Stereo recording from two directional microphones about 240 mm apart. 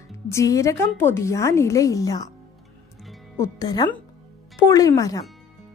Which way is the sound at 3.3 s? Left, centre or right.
Centre.